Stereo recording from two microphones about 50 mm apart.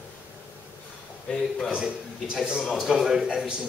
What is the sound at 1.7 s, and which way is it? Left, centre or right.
A man's voice, centre.